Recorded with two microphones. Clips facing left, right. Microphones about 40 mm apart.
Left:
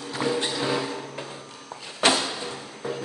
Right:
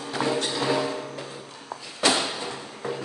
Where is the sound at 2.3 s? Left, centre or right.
Centre.